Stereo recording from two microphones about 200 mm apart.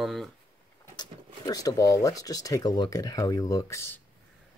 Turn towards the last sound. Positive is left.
turn(degrees=15)  # may be behind; listen again after turning